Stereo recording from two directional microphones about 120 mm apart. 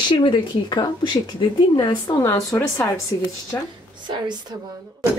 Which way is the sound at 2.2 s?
20° left (ahead or behind).